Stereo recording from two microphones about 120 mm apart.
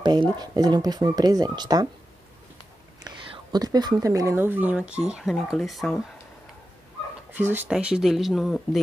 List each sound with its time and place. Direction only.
0.0 s speech: 35° right (ahead or behind)
3.5 s speech: 35° right (ahead or behind)
4.4 s speech: 15° right (ahead or behind)
7.3 s speech: 15° right (ahead or behind)
7.7 s speech: 5° right (ahead or behind)